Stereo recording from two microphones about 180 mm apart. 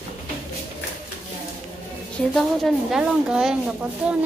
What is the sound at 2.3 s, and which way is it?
Speech, centre (ahead or behind).